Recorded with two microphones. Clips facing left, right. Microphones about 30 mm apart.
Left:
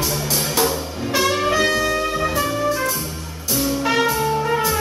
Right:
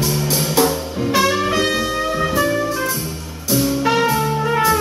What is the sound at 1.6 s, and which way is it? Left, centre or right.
Music, centre.